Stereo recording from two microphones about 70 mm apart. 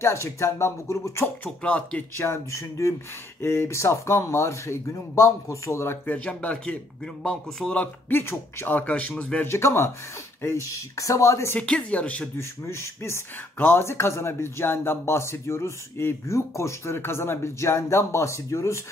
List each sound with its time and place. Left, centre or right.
0.0 s speech: left
1.4 s speech: centre
2.1 s speech: left
6.0 s speech: centre
7.8 s speech: left
8.7 s speech: left
9.5 s speech: left
11.9 s speech: centre
12.4 s speech: left